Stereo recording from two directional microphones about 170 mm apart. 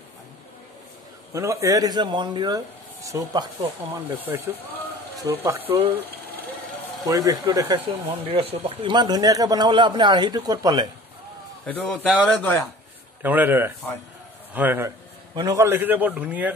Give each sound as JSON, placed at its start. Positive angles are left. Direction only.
{"t": 1.3, "sound": "a man's voice", "side_deg": -20}
{"t": 7.1, "sound": "a man's voice", "side_deg": -20}
{"t": 8.0, "sound": "a man's voice", "side_deg": -35}
{"t": 11.6, "sound": "a man's voice", "side_deg": 5}
{"t": 13.2, "sound": "a man's voice", "side_deg": -10}
{"t": 15.3, "sound": "a man's voice", "side_deg": -20}